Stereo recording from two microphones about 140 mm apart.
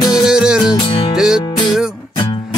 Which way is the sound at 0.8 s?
40° left (ahead or behind).